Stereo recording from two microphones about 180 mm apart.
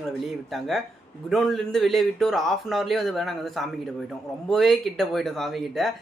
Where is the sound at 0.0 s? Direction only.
Centre (ahead or behind).